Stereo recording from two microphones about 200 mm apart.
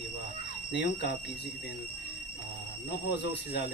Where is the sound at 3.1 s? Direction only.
60° left (ahead or behind).